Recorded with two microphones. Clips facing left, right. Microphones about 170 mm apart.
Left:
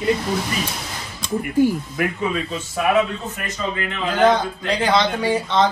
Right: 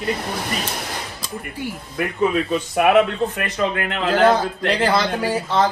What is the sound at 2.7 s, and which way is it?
Speech, 65° right (ahead or behind).